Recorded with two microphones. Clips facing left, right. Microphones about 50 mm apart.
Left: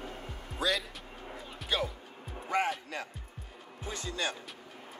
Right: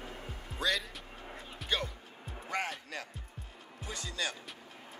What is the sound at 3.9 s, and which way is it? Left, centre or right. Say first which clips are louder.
Speech: left 3 dB; left.